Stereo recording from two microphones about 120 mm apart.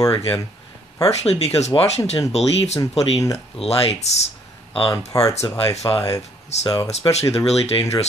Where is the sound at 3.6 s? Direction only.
60° left (ahead or behind).